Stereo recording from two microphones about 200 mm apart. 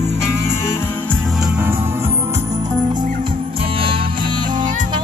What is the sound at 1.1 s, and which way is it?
Music, 5° right (ahead or behind).